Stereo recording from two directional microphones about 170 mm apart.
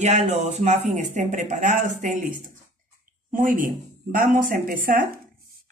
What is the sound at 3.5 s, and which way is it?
Speech, 55° right (ahead or behind).